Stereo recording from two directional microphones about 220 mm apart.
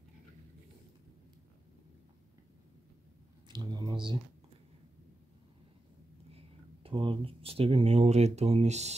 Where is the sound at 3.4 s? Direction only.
20° right (ahead or behind).